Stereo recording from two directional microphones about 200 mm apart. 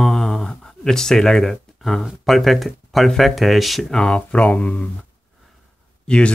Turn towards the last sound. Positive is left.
turn(degrees=5)  # may be behind; listen again after turning